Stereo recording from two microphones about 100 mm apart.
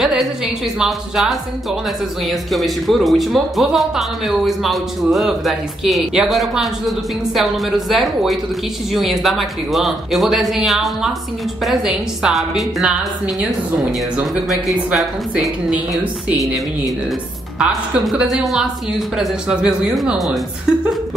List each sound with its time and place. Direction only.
0.0 s a sound: 5° right (ahead or behind)
0.7 s a woman's voice: 5° right (ahead or behind)
15.0 s speech: centre (ahead or behind)
17.6 s a woman's voice: 10° right (ahead or behind)